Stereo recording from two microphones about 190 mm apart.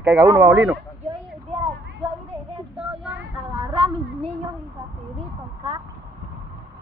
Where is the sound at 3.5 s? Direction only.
30° right (ahead or behind).